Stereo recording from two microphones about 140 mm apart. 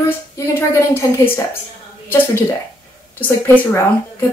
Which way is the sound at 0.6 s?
20° left (ahead or behind).